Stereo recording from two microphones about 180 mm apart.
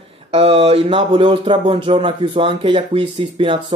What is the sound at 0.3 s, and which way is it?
Speech, 30° right (ahead or behind).